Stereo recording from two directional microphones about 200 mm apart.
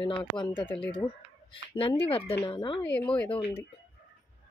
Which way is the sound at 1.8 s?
25° left (ahead or behind).